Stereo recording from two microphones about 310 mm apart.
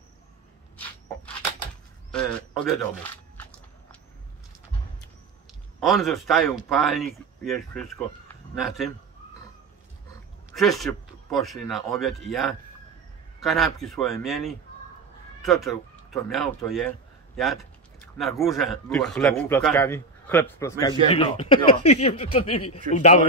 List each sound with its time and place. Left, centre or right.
0.7 s a sound: centre
5.8 s a man's voice: centre
10.5 s a man's voice: centre
15.6 s a man's voice: centre; by 23.2 s left